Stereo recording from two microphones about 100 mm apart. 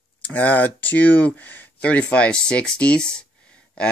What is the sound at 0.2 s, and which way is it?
Speech, 15° left (ahead or behind).